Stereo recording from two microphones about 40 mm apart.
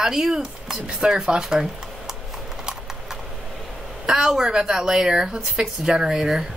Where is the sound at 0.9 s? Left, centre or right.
Right.